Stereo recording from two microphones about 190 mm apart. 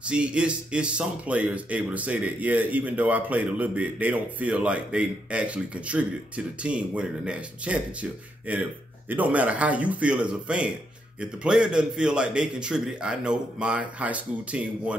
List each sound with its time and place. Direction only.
0.0 s a man's voice: 5° right (ahead or behind)